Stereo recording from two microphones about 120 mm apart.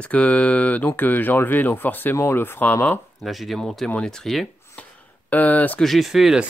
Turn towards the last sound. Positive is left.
turn(degrees=-5)  # may be behind; listen again after turning